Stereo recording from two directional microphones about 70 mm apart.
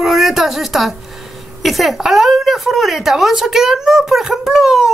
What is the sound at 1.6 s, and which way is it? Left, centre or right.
Speech, centre.